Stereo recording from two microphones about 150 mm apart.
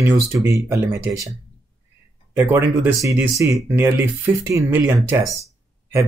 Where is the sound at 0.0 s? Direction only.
15° right (ahead or behind).